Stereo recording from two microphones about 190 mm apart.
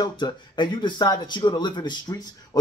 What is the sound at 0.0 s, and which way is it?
Speech, 25° left (ahead or behind).